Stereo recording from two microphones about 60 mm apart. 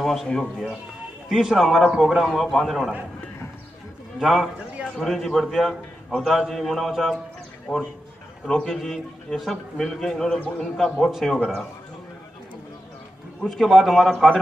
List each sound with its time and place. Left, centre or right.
0.0 s a man's voice: centre
4.2 s a man's voice: centre
7.7 s a man's voice: left
8.5 s a man's voice: centre
11.0 s a man's voice: centre
13.4 s a man's voice: centre